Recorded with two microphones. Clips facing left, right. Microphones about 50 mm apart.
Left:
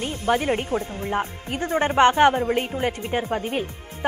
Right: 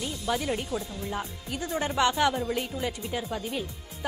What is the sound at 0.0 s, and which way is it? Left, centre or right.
A woman's voice, left.